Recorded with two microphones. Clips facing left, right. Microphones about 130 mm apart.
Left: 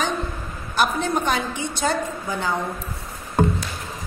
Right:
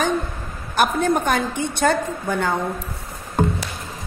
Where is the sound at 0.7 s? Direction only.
50° right (ahead or behind).